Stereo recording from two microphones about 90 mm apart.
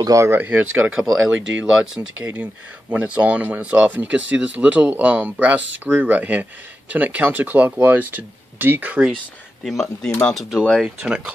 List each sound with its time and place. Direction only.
0.0 s speech: 40° right (ahead or behind)
0.3 s speech: 20° right (ahead or behind)
9.7 s speech: 5° left (ahead or behind)
11.0 s speech: 10° right (ahead or behind)